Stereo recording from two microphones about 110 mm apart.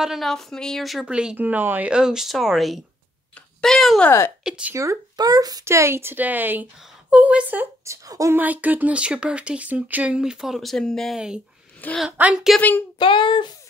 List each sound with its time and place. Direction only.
0.0 s a woman's voice: centre (ahead or behind)
4.7 s speech: 30° right (ahead or behind); by 7.6 s 15° right (ahead or behind)
7.8 s speech: 30° right (ahead or behind)
8.4 s speech: 15° right (ahead or behind); by 11.1 s 5° left (ahead or behind)
11.1 s speech: 5° right (ahead or behind)
13.0 s a sound: 50° left (ahead or behind)